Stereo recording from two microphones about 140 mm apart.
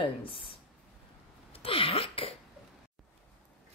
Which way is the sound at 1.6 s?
40° left (ahead or behind).